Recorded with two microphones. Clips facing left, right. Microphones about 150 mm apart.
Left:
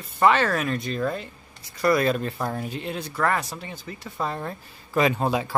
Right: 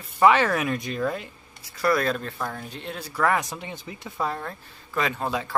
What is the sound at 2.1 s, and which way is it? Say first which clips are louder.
Speech: left 4 dB; 20° left (ahead or behind).